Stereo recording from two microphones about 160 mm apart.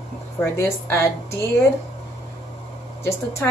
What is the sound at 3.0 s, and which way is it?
Speech, 15° left (ahead or behind).